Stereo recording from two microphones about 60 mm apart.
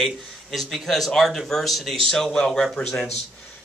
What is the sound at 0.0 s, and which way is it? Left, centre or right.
A man's voice, centre.